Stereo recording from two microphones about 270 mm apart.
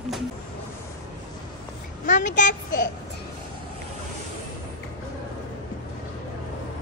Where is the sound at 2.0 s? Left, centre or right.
Left.